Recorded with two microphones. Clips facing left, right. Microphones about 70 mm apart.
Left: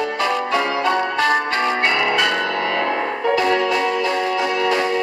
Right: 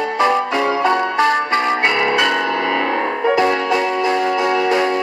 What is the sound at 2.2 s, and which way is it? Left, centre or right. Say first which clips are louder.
Music: right 3 dB; right.